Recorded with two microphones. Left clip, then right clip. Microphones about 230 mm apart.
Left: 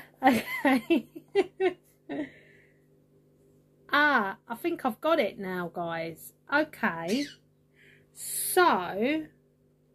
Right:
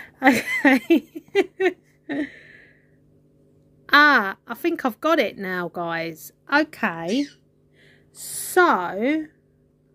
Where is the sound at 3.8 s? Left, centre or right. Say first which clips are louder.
Right 9 dB; right.